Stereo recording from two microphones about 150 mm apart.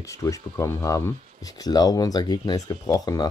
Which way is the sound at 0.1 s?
20° left (ahead or behind).